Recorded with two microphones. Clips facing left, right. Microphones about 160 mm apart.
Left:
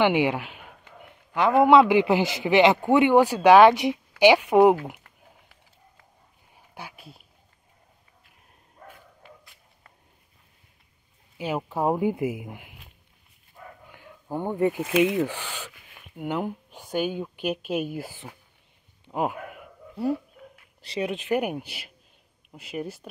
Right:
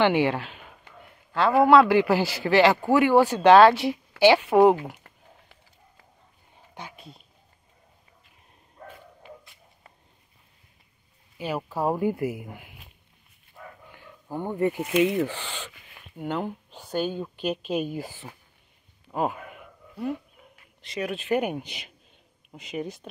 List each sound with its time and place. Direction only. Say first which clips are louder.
0.0 s speech: even; 15° left (ahead or behind)
1.6 s speech: even; 20° left (ahead or behind)
6.7 s a sound: even; 5° left (ahead or behind)
11.3 s speech: left 1 dB; 15° left (ahead or behind)
13.9 s speech: left 2 dB; 15° left (ahead or behind)
19.1 s a sound: left 1 dB; 10° left (ahead or behind)
20.8 s speech: left 2 dB; 30° left (ahead or behind)
21.1 s speech: right 2 dB; 15° left (ahead or behind)